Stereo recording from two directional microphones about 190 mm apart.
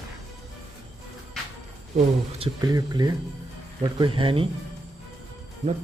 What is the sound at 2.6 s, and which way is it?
Speech, 20° right (ahead or behind).